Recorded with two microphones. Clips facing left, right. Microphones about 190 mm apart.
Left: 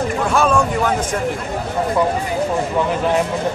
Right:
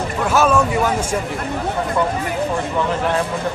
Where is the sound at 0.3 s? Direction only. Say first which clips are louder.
Right 2 dB; 5° right (ahead or behind).